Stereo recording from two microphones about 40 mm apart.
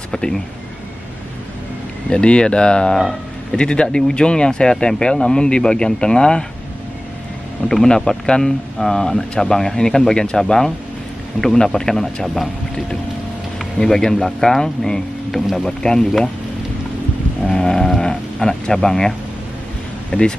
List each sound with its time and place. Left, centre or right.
0.1 s speech: centre
2.0 s speech: left
7.6 s speech: centre
13.8 s speech: centre
17.5 s speech: centre
20.1 s speech: left